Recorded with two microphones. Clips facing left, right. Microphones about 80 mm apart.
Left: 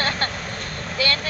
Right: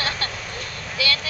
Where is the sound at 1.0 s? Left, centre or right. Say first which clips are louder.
Left 2 dB; left.